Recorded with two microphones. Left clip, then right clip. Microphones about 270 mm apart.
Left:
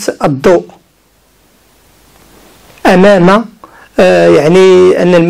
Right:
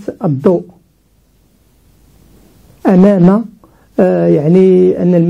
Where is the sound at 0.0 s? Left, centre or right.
Centre.